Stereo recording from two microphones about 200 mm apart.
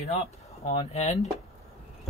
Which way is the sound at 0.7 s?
30° left (ahead or behind).